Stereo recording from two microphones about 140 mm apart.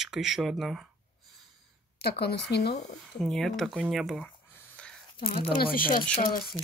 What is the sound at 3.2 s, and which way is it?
Speech, centre (ahead or behind).